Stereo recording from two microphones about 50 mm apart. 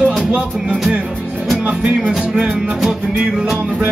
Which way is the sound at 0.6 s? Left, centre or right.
Centre.